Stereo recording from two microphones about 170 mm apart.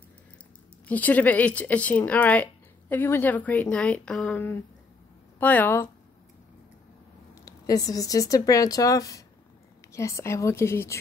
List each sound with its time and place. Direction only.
0.8 s speech: 10° left (ahead or behind)
7.3 s speech: 20° left (ahead or behind)